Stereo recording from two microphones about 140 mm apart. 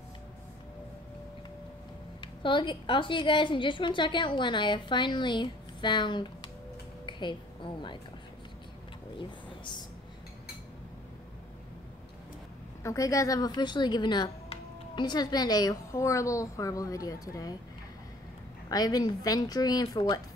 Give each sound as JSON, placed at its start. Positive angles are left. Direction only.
{"t": 2.4, "sound": "a woman's voice", "side_deg": 35}
{"t": 12.8, "sound": "speech", "side_deg": 25}
{"t": 18.7, "sound": "speech", "side_deg": 25}